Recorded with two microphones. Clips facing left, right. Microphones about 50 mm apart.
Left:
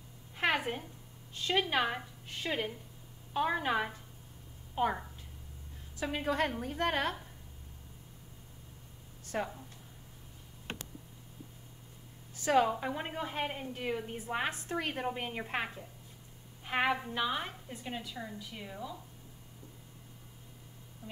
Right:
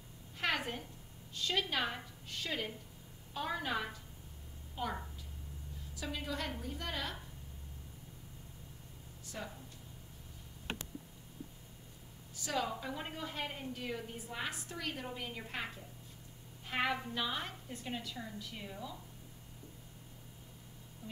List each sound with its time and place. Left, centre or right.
0.4 s a sound: left
1.3 s a woman's voice: left
5.9 s a woman's voice: left
9.2 s a sound: left
12.4 s a woman's voice: left
16.6 s a woman's voice: left